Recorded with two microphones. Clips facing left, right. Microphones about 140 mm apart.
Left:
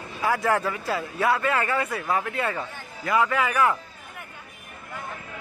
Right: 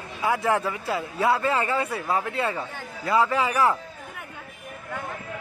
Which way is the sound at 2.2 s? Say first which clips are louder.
Right 1 dB; 30° right (ahead or behind).